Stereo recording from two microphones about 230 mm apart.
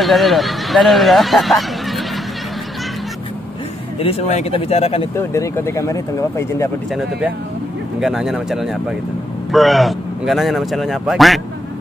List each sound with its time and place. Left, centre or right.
0.0 s speech: centre
4.0 s speech: left
5.1 s speech: centre
6.9 s speech: centre